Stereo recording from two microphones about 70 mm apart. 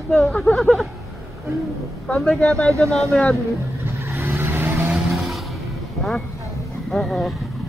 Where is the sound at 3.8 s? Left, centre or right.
Right.